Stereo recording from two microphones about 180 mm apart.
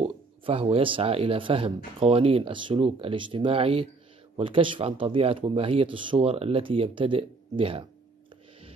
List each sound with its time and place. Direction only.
0.0 s speech: 35° right (ahead or behind)